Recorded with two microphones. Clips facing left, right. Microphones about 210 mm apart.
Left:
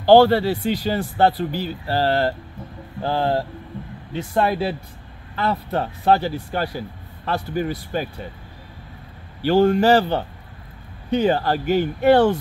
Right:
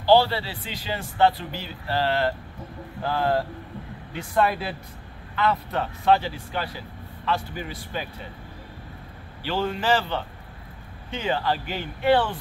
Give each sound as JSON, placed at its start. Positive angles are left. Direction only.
{"t": 0.0, "sound": "speech", "side_deg": 50}
{"t": 9.4, "sound": "speech", "side_deg": 45}